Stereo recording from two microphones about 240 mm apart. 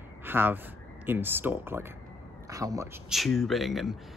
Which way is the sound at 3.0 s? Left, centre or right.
Centre.